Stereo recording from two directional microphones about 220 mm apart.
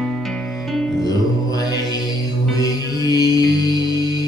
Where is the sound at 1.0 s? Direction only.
15° left (ahead or behind).